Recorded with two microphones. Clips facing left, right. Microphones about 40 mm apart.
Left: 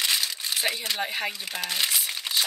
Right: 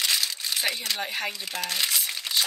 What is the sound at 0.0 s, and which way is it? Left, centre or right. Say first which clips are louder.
Crumpling: even; centre.